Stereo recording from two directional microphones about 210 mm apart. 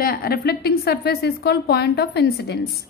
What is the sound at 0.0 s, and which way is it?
A woman's voice, 45° left (ahead or behind).